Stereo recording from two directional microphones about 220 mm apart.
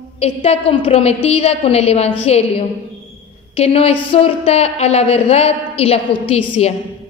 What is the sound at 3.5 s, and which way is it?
A woman's voice, 25° left (ahead or behind).